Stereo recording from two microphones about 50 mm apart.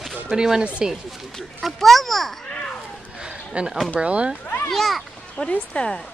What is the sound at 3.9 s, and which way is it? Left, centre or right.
Speech, right.